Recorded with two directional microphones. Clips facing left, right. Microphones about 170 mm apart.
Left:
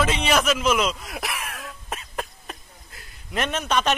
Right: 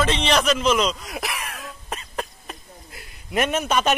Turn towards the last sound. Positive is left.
turn(degrees=-5)  # may be behind; listen again after turning